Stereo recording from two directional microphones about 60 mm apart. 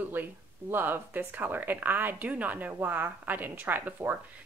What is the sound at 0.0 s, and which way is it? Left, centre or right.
Speech, right.